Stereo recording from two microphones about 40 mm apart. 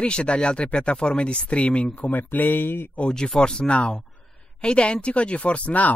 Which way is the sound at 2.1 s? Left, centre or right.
Left.